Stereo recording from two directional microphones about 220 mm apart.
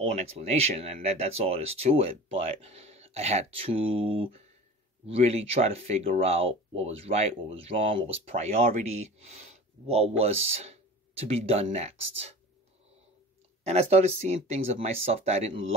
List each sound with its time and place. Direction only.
0.0 s speech: 30° right (ahead or behind)
13.7 s speech: 30° right (ahead or behind)